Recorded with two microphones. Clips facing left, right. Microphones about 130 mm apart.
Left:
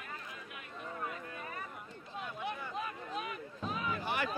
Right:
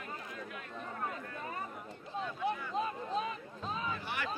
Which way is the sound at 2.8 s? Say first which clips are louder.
Right 5 dB; 30° right (ahead or behind).